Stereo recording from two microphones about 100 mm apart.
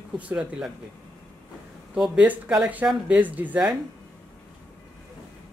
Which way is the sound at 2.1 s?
15° right (ahead or behind).